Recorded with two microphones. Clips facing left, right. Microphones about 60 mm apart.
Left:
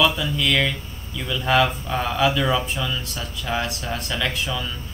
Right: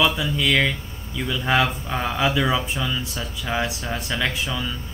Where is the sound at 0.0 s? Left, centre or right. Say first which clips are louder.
Even; centre.